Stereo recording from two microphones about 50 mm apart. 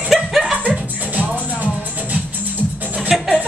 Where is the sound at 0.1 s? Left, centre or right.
Centre.